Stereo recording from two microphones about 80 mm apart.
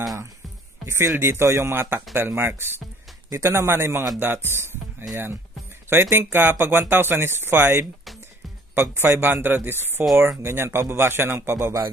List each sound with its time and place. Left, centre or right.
0.8 s speech: right